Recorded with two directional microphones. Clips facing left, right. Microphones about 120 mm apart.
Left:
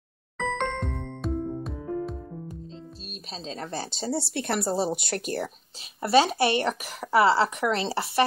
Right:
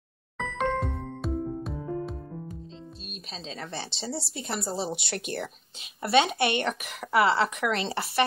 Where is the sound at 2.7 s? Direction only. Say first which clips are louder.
Left 1 dB; 35° left (ahead or behind).